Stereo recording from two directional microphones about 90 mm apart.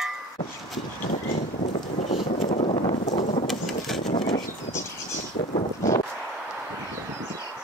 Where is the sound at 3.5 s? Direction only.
Centre (ahead or behind).